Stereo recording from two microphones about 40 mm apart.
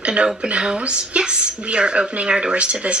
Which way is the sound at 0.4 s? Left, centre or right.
Right.